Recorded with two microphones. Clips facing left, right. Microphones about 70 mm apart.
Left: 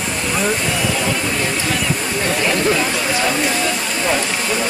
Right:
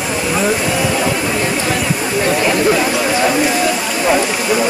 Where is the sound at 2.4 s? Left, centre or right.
Centre.